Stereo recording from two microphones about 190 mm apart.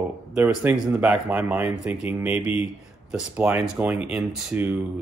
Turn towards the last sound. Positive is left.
turn(degrees=-5)  # may be behind; listen again after turning